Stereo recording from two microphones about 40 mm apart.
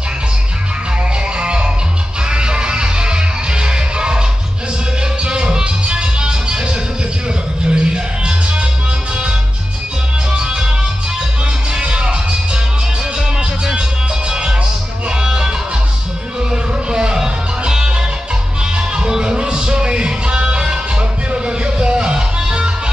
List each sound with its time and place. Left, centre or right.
1.4 s music: right
5.2 s music: right
10.4 s music: centre
11.7 s music: right
13.4 s music: right
15.0 s music: centre